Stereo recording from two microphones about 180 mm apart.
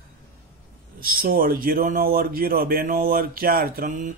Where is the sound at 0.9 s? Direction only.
55° right (ahead or behind).